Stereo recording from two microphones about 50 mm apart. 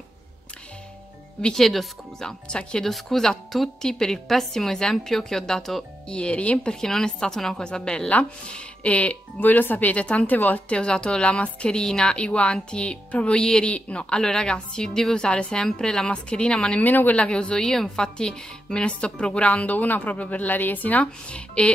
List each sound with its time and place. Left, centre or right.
1.6 s a woman's voice: centre
6.0 s a woman's voice: left
6.7 s a woman's voice: centre
9.4 s speech: left
10.7 s a woman's voice: centre
16.8 s speech: left
17.2 s a woman's voice: centre
17.6 s a woman's voice: centre; by 21.0 s left
21.0 s a woman's voice: left